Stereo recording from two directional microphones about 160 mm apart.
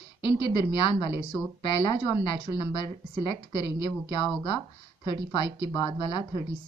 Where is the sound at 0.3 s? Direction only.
85° right.